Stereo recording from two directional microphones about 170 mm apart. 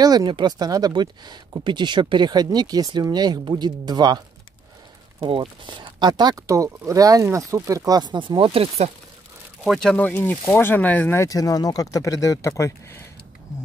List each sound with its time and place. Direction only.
0.0 s speech: 20° right (ahead or behind)
5.2 s speech: 30° right (ahead or behind)
9.7 s speech: 5° left (ahead or behind)